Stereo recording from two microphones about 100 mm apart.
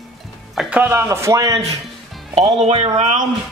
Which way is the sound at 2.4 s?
90° right.